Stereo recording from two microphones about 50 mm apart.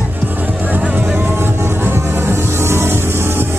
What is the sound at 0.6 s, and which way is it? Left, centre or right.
Music, right.